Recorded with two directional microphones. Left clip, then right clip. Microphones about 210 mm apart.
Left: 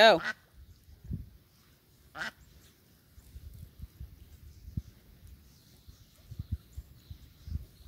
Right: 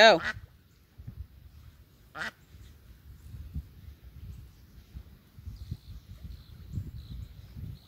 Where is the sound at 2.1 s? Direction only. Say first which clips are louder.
Right 2 dB; 20° right (ahead or behind).